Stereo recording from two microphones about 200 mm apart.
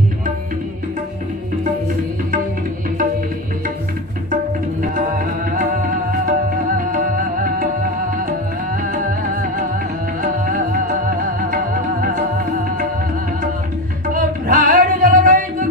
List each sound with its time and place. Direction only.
4.9 s music: 45° right (ahead or behind)
11.5 s music: 45° right (ahead or behind)
14.1 s music: 40° right (ahead or behind)